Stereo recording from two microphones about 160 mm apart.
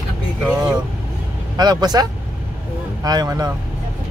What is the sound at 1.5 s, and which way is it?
Speech, 25° right (ahead or behind).